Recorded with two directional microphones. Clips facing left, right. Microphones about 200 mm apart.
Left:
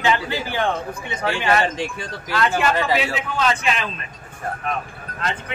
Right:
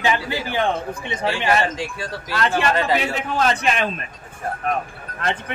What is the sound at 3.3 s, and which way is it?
Speech, 45° right (ahead or behind).